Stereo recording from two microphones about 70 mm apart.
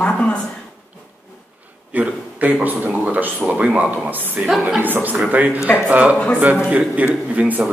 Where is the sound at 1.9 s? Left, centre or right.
Right.